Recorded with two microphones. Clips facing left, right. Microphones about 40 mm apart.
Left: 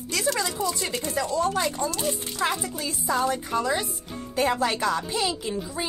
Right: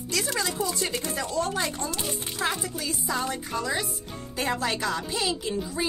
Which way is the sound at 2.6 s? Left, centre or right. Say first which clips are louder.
Left 2 dB; left.